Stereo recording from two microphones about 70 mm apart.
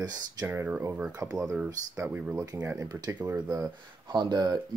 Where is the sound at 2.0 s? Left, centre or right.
Right.